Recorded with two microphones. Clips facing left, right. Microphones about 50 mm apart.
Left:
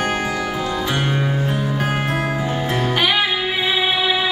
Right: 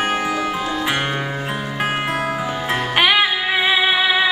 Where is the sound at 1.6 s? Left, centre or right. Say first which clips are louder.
Even; right.